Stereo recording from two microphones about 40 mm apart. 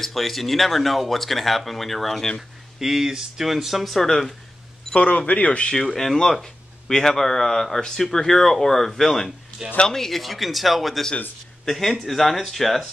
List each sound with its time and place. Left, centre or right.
0.0 s speech: centre
2.8 s speech: centre
4.9 s speech: left
5.7 s speech: centre